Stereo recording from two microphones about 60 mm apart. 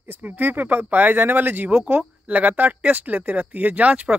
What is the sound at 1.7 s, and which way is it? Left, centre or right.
Speech, right.